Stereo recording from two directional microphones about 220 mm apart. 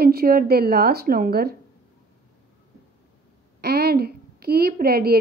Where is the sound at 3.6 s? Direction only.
45° right (ahead or behind).